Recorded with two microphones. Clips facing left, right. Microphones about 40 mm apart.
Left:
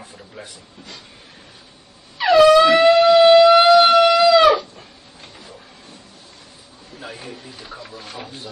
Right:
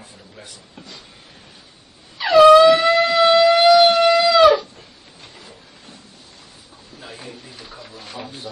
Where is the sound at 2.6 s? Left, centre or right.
Left.